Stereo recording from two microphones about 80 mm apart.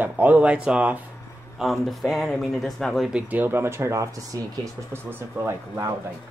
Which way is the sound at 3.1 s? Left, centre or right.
Centre.